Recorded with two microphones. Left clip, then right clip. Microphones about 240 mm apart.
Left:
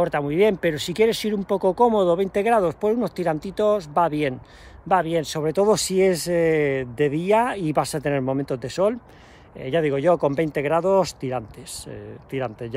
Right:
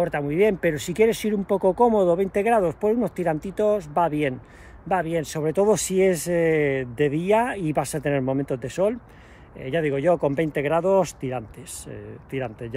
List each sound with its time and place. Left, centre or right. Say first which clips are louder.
0.0 s speech: left 2 dB; centre